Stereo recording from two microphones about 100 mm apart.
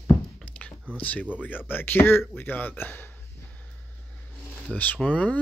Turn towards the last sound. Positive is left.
turn(degrees=10)  # may be behind; listen again after turning